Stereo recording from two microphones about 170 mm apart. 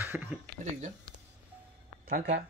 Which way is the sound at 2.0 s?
50° right (ahead or behind).